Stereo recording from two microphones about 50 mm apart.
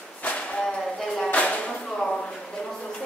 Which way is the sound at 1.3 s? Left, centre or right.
Left.